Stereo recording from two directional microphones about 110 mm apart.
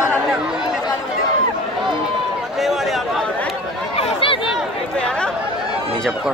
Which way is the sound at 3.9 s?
55° left (ahead or behind).